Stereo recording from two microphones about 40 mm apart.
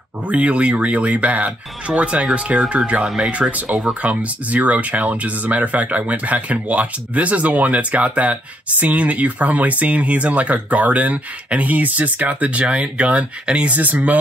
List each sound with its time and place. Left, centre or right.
0.3 s speech: right